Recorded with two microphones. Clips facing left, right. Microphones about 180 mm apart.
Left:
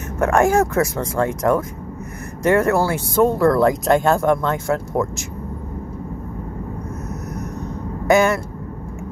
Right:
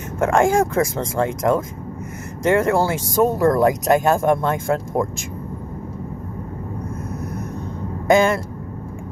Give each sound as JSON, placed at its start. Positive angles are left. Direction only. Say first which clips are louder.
{"t": 0.2, "sound": "speech", "louder": "left 1 dB", "side_deg": -25}
{"t": 3.2, "sound": "speech", "louder": "left 1 dB", "side_deg": -15}